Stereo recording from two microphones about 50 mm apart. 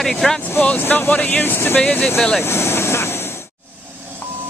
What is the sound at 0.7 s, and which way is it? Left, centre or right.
Speech, left.